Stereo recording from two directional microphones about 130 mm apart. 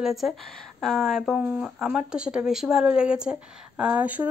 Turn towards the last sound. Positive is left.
turn(degrees=-10)  # may be behind; listen again after turning